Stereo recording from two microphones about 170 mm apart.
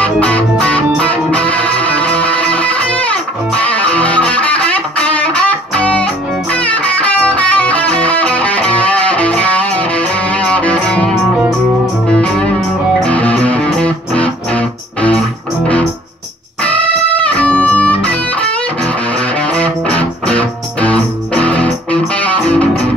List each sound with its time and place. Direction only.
0.0 s music: 10° left (ahead or behind)
17.3 s music: 10° left (ahead or behind)
19.4 s music: 5° left (ahead or behind)